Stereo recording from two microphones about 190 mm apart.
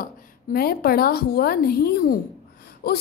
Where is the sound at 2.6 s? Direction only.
55° left (ahead or behind).